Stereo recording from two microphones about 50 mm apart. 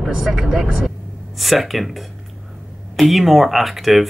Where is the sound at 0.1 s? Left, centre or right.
Centre.